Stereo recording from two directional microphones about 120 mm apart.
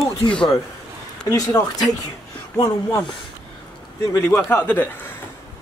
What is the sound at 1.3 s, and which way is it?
A man's voice, 30° left (ahead or behind).